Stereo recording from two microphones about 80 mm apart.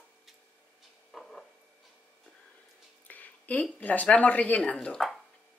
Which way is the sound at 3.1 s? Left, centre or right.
Centre.